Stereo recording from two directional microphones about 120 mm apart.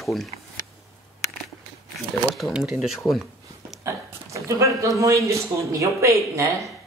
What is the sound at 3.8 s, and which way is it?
Speech, 25° right (ahead or behind).